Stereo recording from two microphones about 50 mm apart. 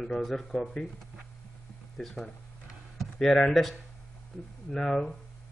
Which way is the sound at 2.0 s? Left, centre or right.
Centre.